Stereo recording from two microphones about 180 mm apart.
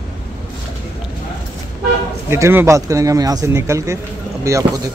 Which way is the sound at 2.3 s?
15° right (ahead or behind).